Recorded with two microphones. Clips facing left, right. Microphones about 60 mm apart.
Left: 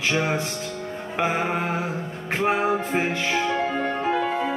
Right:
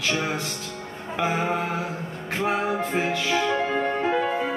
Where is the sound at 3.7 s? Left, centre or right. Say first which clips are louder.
Right 1 dB; right.